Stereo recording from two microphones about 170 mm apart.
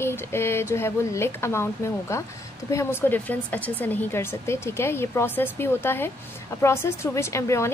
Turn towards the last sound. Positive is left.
turn(degrees=15)  # may be behind; listen again after turning